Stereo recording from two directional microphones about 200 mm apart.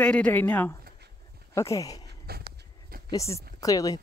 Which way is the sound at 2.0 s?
50° right (ahead or behind).